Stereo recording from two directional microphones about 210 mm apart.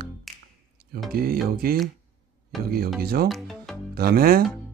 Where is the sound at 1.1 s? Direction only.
45° right (ahead or behind).